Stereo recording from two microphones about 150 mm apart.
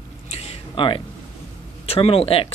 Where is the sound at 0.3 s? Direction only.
40° left (ahead or behind).